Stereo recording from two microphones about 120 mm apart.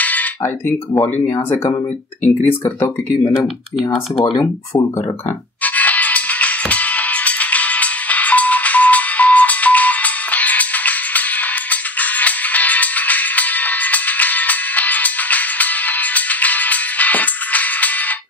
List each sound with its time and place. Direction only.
0.0 s speech: 15° left (ahead or behind)
4.2 s speech: 30° left (ahead or behind)
5.6 s music: 15° left (ahead or behind)